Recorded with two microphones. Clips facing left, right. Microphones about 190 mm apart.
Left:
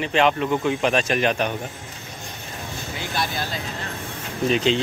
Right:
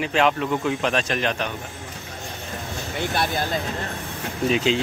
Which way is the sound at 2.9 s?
55° right (ahead or behind).